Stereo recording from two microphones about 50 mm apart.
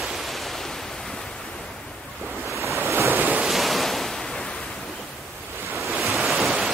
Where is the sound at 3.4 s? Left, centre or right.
Centre.